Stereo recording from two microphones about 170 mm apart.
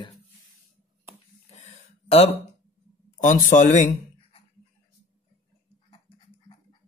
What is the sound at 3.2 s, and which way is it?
Speech, 50° left (ahead or behind).